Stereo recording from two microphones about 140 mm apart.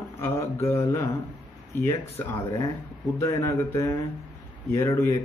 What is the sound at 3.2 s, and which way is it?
Speech, 20° left (ahead or behind).